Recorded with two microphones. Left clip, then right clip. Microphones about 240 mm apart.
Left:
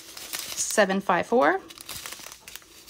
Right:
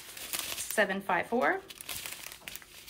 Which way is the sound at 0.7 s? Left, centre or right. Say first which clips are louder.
Left 7 dB; centre.